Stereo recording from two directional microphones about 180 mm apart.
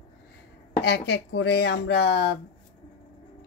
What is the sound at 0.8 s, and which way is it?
Speech, 70° left (ahead or behind).